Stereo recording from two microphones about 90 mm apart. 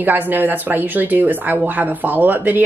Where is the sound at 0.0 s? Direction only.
20° right (ahead or behind).